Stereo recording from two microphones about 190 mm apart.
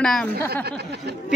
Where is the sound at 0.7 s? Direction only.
60° right (ahead or behind).